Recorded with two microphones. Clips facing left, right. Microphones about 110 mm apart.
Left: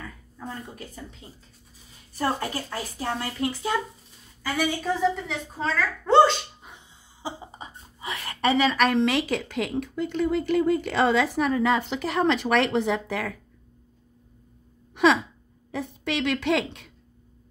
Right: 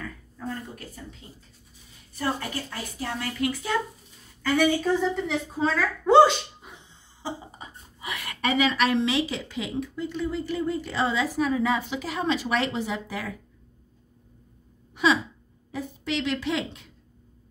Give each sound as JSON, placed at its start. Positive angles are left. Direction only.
{"t": 0.0, "sound": "a sound", "side_deg": 20}
{"t": 1.2, "sound": "a woman's voice", "side_deg": 35}
{"t": 4.4, "sound": "a woman's voice", "side_deg": 5}
{"t": 7.2, "sound": "speech", "side_deg": 25}
{"t": 15.7, "sound": "a woman's voice", "side_deg": 70}